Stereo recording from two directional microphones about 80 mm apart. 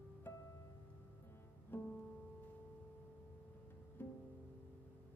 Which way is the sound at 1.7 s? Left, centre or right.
Left.